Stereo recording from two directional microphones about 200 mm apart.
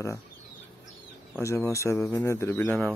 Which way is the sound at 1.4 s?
15° left (ahead or behind).